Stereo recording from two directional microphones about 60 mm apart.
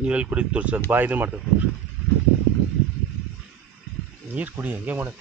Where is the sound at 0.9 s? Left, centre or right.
Right.